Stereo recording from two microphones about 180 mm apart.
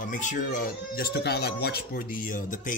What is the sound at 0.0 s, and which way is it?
A man's voice, 45° left (ahead or behind).